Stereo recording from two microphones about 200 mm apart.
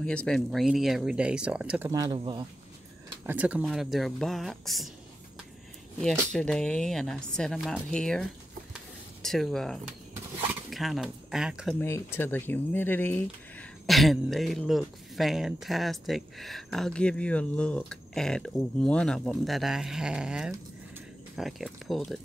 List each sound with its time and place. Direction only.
0.0 s speech: 5° left (ahead or behind)
1.9 s speech: 20° right (ahead or behind)
3.3 s speech: 5° right (ahead or behind)
5.9 s speech: 5° left (ahead or behind)
8.7 s a sound: centre (ahead or behind)
10.7 s speech: centre (ahead or behind)
11.8 s speech: 10° left (ahead or behind)